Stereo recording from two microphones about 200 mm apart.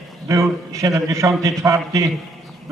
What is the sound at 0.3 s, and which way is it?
A man's voice, 15° right (ahead or behind).